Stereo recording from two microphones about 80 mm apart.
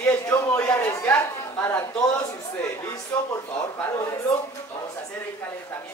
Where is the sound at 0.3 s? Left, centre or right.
Left.